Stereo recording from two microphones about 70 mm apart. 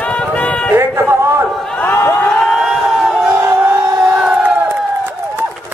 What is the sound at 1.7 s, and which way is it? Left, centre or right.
Crowd, left.